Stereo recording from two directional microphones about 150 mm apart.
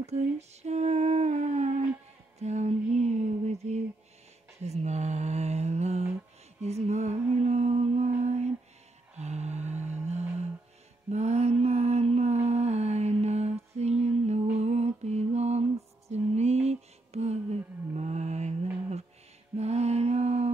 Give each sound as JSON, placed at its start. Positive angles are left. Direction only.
{"t": 0.0, "sound": "female singing", "side_deg": -45}
{"t": 2.3, "sound": "a sound", "side_deg": -50}
{"t": 4.6, "sound": "mantra", "side_deg": -50}
{"t": 6.6, "sound": "music", "side_deg": -45}
{"t": 8.2, "sound": "lullaby", "side_deg": -45}
{"t": 11.1, "sound": "mantra", "side_deg": -50}
{"t": 14.6, "sound": "lullaby", "side_deg": -45}
{"t": 19.5, "sound": "mantra", "side_deg": -45}